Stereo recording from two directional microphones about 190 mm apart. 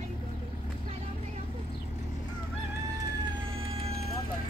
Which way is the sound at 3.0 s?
65° left (ahead or behind).